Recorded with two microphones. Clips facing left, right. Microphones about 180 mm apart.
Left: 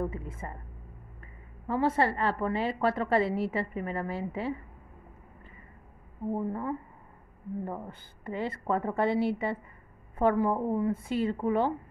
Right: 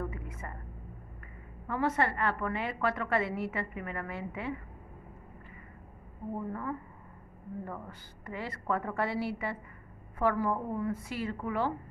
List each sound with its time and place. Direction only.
0.0 s a sound: 25° left (ahead or behind)
1.7 s a woman's voice: 30° left (ahead or behind)
6.3 s a woman's voice: 25° left (ahead or behind)